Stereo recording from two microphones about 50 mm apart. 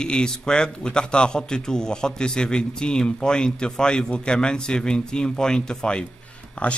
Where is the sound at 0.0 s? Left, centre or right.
Centre.